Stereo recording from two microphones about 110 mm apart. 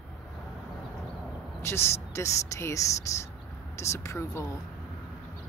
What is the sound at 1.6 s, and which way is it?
Speech, 25° left (ahead or behind).